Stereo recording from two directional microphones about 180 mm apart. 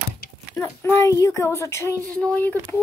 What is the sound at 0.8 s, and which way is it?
Speech, 15° left (ahead or behind).